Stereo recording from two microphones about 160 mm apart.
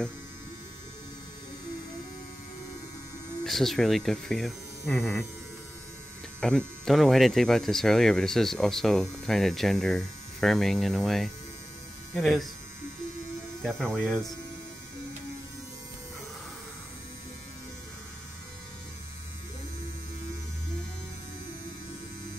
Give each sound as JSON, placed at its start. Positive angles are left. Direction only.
{"t": 3.4, "sound": "speech", "side_deg": 0}
{"t": 6.4, "sound": "speech", "side_deg": 0}
{"t": 13.6, "sound": "speech", "side_deg": 5}